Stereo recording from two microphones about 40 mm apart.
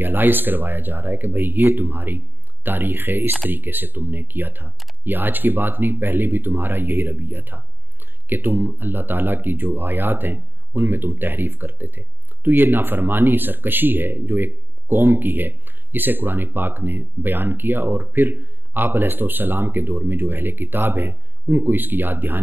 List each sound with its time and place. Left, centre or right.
0.0 s speech: right